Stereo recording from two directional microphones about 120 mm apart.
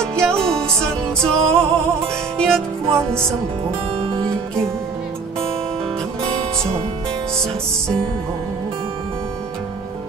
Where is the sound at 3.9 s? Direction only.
55° right (ahead or behind).